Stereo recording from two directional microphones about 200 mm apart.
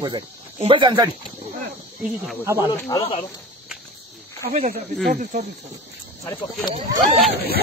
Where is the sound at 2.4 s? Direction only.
10° right (ahead or behind).